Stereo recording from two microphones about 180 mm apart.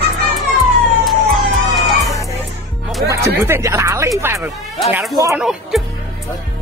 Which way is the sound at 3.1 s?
15° right (ahead or behind).